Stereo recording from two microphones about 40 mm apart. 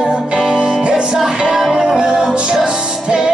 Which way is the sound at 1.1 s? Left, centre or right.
Centre.